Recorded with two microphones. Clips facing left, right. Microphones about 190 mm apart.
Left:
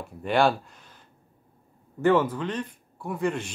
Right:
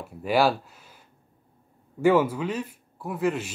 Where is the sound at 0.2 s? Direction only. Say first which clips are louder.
Even; 5° right (ahead or behind).